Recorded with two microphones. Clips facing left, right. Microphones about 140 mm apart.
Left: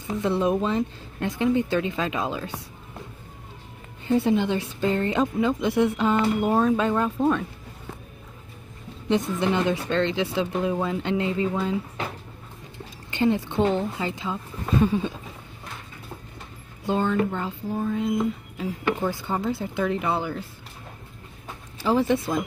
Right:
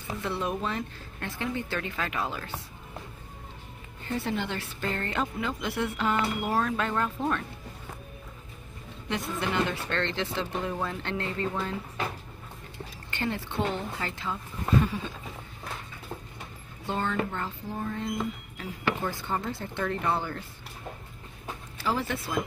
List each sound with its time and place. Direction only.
0.2 s speech: 20° left (ahead or behind)
4.0 s speech: 15° left (ahead or behind)
9.1 s speech: 20° left (ahead or behind)
13.1 s speech: 20° left (ahead or behind)
16.8 s speech: 15° left (ahead or behind)
21.7 s speech: 20° left (ahead or behind)